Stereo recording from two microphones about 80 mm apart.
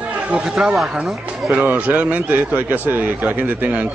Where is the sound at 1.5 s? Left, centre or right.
Right.